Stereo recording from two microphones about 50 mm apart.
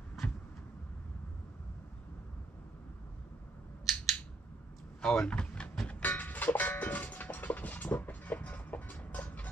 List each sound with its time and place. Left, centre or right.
3.8 s scissors: centre
5.0 s speech: centre
6.0 s a sound: left